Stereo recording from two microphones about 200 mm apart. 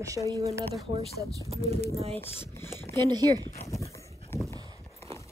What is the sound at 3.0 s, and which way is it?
Speech, 20° right (ahead or behind).